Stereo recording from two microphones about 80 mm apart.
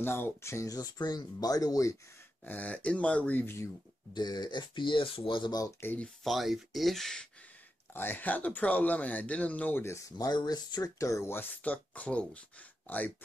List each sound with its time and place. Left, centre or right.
0.0 s speech: left
2.4 s speech: centre
4.1 s speech: left
6.2 s speech: centre
7.9 s speech: left
10.1 s speech: left
11.0 s speech: left
11.6 s speech: centre